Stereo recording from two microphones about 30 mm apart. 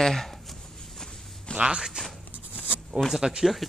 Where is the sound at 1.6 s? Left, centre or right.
Right.